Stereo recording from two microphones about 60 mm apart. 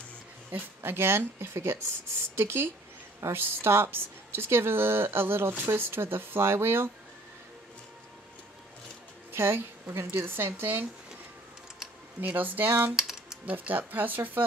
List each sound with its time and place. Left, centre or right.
0.5 s speech: right
9.3 s speech: right
12.2 s speech: right
12.9 s typing: centre
13.5 s speech: right